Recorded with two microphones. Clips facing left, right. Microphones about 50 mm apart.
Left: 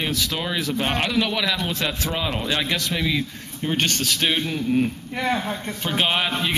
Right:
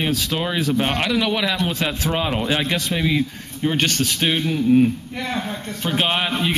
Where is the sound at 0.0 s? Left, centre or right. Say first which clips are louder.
Right 3 dB; centre.